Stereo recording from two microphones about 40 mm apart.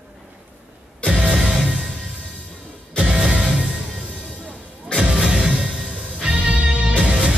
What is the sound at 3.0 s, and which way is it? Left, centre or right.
Music, right.